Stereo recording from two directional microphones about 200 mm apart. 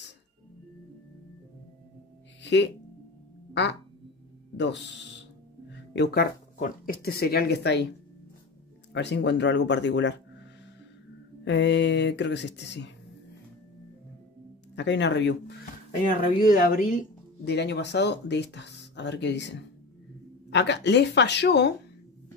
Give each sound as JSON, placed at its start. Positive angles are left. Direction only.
{"t": 2.4, "sound": "speech", "side_deg": 60}
{"t": 5.9, "sound": "speech", "side_deg": 50}
{"t": 8.9, "sound": "speech", "side_deg": 60}
{"t": 11.4, "sound": "speech", "side_deg": 60}
{"t": 14.8, "sound": "speech", "side_deg": 60}
{"t": 16.3, "sound": "speech", "side_deg": 45}
{"t": 17.5, "sound": "speech", "side_deg": 60}